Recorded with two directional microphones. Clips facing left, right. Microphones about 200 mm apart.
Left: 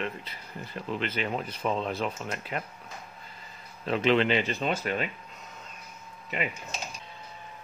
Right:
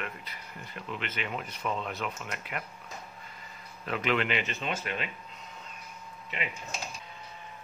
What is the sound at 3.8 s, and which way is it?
Speech, 30° left (ahead or behind).